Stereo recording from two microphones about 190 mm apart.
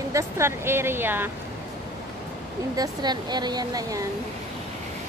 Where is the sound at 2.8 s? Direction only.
20° right (ahead or behind).